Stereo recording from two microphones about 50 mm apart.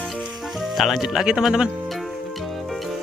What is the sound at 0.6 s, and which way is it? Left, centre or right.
Speech, centre.